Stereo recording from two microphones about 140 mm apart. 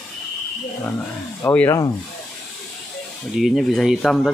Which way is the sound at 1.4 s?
20° left (ahead or behind).